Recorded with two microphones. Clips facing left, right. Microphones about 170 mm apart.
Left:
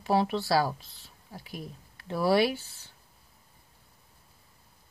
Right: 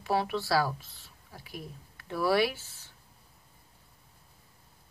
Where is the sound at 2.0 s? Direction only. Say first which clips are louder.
Left 2 dB; 25° left (ahead or behind).